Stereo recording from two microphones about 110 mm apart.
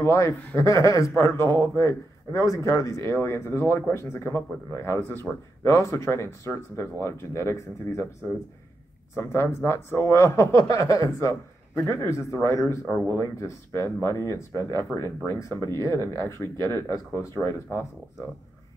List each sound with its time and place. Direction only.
0.0 s a man's voice: 25° left (ahead or behind)
9.1 s a man's voice: 25° left (ahead or behind)